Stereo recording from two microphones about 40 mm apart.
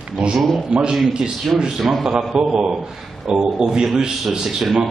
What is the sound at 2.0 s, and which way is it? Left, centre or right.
A man's voice, centre.